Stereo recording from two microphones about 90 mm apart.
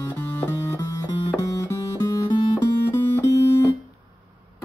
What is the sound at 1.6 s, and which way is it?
Music, 35° left (ahead or behind).